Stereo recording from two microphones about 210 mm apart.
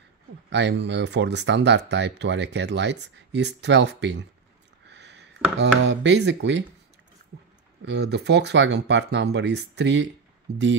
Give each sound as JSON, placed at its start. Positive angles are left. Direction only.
{"t": 0.5, "sound": "speech", "side_deg": -55}
{"t": 4.8, "sound": "a sound", "side_deg": -55}
{"t": 5.6, "sound": "speech", "side_deg": -55}
{"t": 7.8, "sound": "speech", "side_deg": -55}